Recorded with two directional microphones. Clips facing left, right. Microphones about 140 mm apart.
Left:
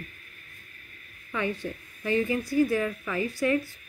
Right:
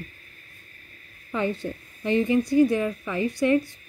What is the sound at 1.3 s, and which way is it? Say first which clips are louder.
A woman's voice: right 3 dB; 30° right (ahead or behind).